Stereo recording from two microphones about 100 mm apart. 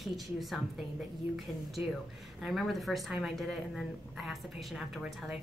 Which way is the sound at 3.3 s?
Centre (ahead or behind).